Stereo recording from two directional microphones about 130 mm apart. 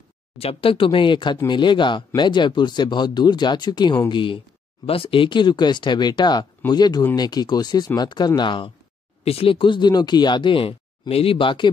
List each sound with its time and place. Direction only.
0.4 s speech: 45° left (ahead or behind)